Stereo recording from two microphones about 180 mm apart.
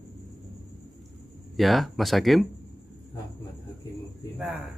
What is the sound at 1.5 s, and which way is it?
Speech, centre (ahead or behind).